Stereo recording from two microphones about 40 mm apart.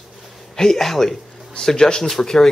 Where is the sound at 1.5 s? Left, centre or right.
Centre.